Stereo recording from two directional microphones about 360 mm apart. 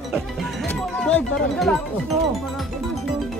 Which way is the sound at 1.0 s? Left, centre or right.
Centre.